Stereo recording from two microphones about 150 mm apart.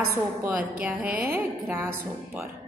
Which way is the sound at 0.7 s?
10° right (ahead or behind).